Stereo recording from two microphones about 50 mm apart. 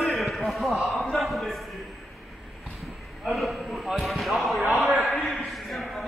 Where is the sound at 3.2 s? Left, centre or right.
Centre.